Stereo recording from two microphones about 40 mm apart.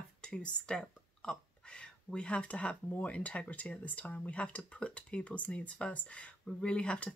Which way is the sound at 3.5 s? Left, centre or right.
Left.